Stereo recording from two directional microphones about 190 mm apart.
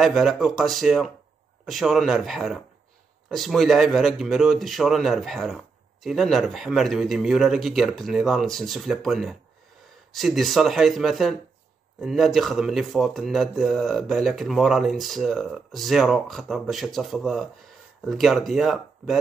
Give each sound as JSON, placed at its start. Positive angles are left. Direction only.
{"t": 0.0, "sound": "speech", "side_deg": 0}